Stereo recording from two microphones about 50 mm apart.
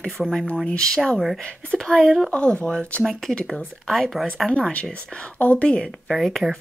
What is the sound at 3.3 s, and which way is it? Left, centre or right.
Speech, left.